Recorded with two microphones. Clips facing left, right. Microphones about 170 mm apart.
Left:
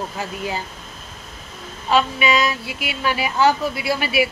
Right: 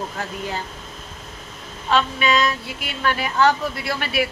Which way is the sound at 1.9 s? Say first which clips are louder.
Left 2 dB; 10° left (ahead or behind).